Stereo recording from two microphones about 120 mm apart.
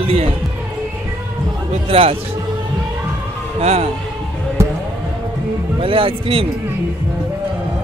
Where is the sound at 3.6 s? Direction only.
60° right (ahead or behind).